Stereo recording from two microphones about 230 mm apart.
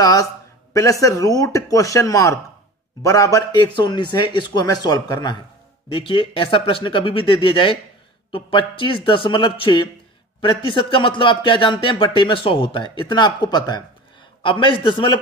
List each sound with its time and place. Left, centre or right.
0.0 s a man's voice: centre